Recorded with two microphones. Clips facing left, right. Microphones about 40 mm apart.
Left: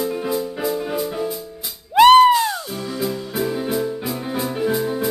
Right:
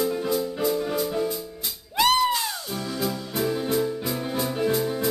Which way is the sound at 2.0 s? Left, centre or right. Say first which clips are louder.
Left 11 dB; left.